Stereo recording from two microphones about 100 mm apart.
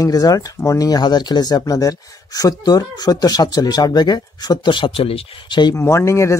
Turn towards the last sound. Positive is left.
turn(degrees=30)  # may be behind; listen again after turning